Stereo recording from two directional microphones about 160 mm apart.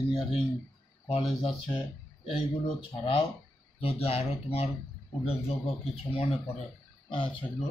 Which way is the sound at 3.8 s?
40° left (ahead or behind).